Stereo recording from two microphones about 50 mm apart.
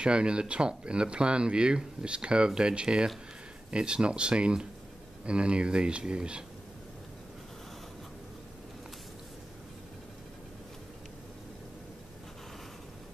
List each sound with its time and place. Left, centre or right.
0.0 s speech: centre